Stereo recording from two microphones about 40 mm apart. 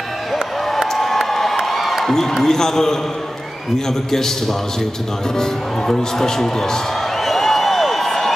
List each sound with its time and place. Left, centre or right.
0.9 s crowd: centre
2.0 s a man's voice: centre
4.1 s speech: centre
7.2 s a sound: centre